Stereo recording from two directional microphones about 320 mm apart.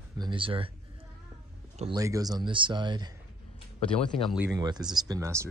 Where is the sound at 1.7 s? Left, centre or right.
Centre.